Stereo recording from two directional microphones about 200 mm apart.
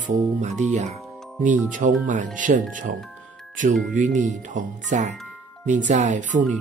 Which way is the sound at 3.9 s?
40° right (ahead or behind).